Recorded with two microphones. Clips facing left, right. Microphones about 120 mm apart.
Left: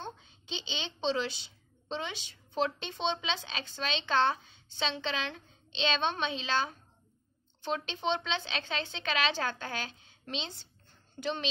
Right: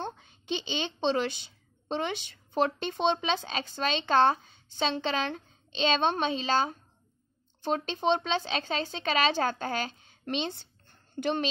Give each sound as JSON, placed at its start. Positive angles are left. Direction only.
{"t": 0.0, "sound": "a woman's voice", "side_deg": -55}